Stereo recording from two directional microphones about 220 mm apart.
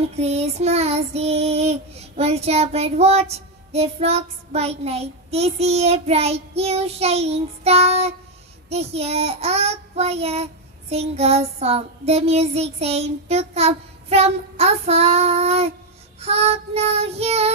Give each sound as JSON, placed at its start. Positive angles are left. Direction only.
{"t": 0.1, "sound": "child singing", "side_deg": -30}